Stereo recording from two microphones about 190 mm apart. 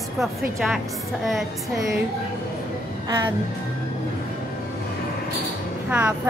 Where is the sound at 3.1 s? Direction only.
20° right (ahead or behind).